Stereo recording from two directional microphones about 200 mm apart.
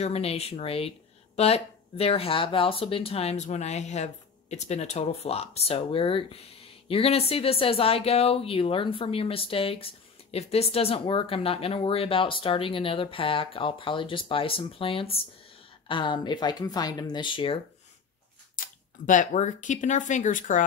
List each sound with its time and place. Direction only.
0.0 s speech: 30° left (ahead or behind)
19.0 s speech: 40° left (ahead or behind)